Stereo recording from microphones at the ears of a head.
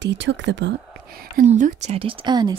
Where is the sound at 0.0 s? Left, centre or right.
Right.